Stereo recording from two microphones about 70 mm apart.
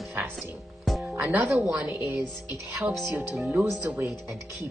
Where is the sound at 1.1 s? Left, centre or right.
Right.